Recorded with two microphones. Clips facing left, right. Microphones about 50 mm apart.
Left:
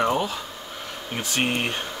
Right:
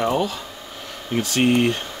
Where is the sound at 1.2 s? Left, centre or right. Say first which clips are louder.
Right 7 dB; left.